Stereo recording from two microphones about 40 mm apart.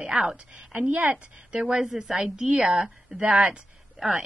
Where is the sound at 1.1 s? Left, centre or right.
Right.